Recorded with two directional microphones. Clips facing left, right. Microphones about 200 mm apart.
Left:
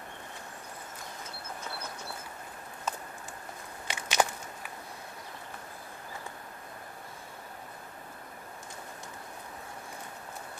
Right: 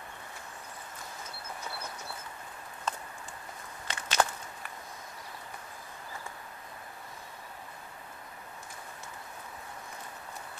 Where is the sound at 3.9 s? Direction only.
15° left (ahead or behind).